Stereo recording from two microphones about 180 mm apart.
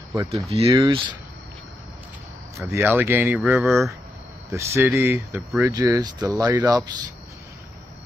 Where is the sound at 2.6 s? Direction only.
15° right (ahead or behind).